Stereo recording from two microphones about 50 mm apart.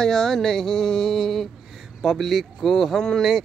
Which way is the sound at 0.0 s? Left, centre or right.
Centre.